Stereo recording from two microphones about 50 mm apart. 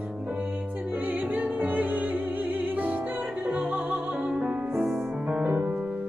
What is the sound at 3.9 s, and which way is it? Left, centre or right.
Music, centre.